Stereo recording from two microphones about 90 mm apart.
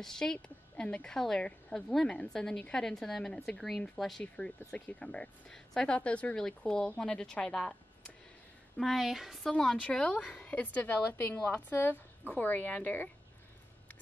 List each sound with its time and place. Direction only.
0.0 s a woman's voice: 5° left (ahead or behind)